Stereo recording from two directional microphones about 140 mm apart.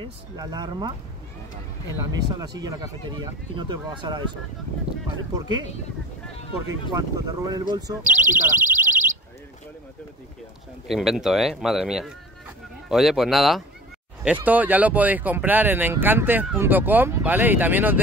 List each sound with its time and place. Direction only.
0.4 s speech: 30° right (ahead or behind)
2.1 s speech: 30° right (ahead or behind)
6.9 s speech: 25° right (ahead or behind)
8.2 s a sound: 75° right (ahead or behind)
10.9 s speech: centre (ahead or behind)
14.2 s speech: 10° right (ahead or behind)